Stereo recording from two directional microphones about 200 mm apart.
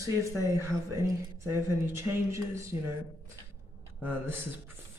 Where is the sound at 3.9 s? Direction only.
10° right (ahead or behind).